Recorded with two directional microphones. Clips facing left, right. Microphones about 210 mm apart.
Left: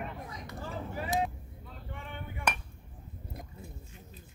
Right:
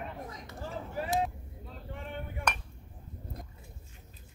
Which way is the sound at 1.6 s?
35° right (ahead or behind).